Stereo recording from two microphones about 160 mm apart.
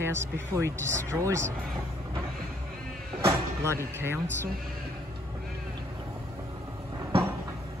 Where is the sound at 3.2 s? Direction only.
15° right (ahead or behind).